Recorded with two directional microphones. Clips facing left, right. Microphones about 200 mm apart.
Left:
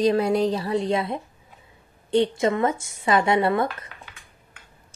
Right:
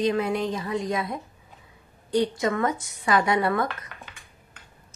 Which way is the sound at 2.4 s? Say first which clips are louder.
Left 3 dB; 25° left (ahead or behind).